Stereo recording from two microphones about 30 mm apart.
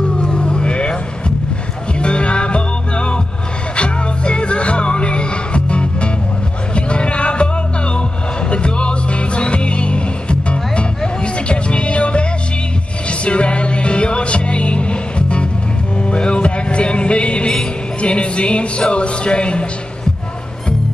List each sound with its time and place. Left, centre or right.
0.2 s vehicle: left
2.0 s music: left
8.5 s music: left